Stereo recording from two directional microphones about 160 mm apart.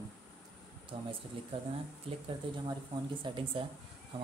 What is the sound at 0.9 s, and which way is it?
Speech, 30° right (ahead or behind).